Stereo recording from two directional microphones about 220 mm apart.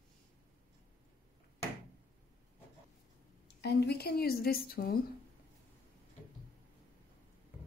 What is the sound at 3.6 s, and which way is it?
A woman's voice, 50° left (ahead or behind).